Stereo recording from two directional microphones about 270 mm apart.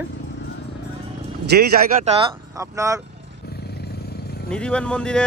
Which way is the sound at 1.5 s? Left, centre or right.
Right.